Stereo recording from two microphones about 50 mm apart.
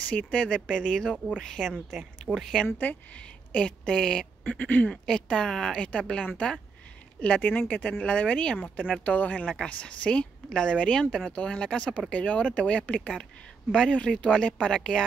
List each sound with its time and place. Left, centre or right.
0.1 s a woman's voice: left
2.3 s a woman's voice: centre
3.2 s speech: left
4.5 s speech: left
5.0 s a woman's voice: centre
7.2 s a woman's voice: left; by 15.0 s centre